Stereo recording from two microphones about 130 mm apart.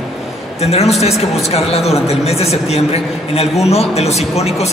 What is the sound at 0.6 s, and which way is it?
A woman's voice, 55° left (ahead or behind).